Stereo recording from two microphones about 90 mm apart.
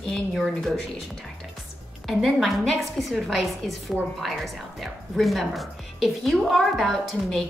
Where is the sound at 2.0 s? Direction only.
Centre (ahead or behind).